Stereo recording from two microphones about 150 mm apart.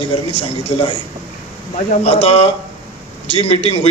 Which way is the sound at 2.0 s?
40° left (ahead or behind).